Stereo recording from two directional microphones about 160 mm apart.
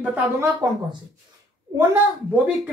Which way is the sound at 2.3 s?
10° right (ahead or behind).